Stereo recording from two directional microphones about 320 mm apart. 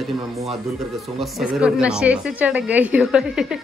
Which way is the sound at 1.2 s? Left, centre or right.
Centre.